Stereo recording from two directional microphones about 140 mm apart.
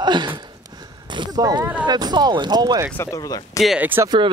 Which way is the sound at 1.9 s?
30° right (ahead or behind).